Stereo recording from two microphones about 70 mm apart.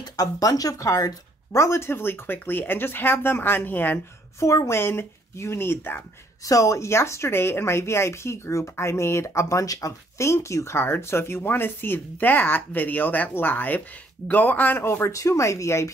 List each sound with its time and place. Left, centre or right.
0.0 s speech: left
4.4 s speech: left
6.4 s speech: left
15.1 s speech: left